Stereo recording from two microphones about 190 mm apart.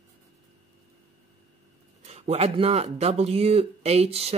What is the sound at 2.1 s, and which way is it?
Speech, 35° right (ahead or behind).